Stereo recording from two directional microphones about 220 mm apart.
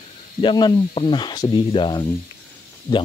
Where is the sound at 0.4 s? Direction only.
20° left (ahead or behind).